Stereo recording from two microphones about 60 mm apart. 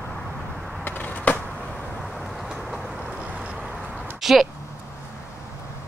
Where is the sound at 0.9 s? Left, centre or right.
Left.